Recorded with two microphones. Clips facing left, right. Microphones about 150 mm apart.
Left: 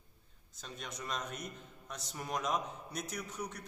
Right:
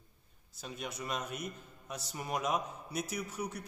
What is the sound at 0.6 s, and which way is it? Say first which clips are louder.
A man's voice: right 4 dB; 10° right (ahead or behind).